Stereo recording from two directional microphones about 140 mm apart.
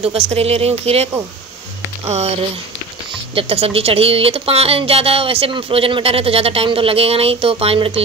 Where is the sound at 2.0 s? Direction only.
50° right (ahead or behind).